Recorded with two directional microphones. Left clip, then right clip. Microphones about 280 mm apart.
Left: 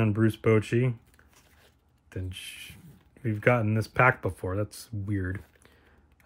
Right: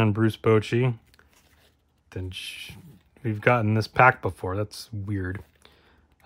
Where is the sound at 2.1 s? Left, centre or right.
Centre.